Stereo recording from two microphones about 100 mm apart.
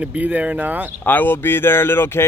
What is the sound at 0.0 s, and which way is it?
Speech, 15° right (ahead or behind).